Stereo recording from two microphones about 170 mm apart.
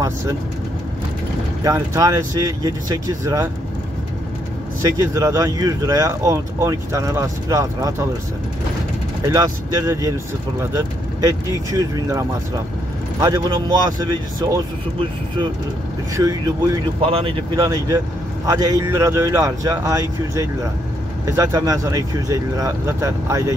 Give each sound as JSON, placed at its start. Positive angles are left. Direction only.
{"t": 1.6, "sound": "speech", "side_deg": -20}
{"t": 4.8, "sound": "speech", "side_deg": -20}
{"t": 9.2, "sound": "speech", "side_deg": -20}
{"t": 16.2, "sound": "speech", "side_deg": -20}
{"t": 17.6, "sound": "speech", "side_deg": -20}